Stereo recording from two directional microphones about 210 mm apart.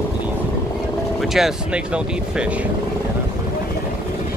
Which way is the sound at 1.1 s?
Centre (ahead or behind).